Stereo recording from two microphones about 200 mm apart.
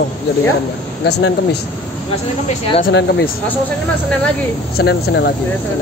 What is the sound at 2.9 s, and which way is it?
Speech, 60° left (ahead or behind).